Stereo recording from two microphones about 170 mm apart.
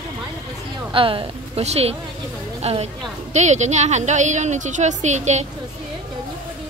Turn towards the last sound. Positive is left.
turn(degrees=-45)  # may be behind; listen again after turning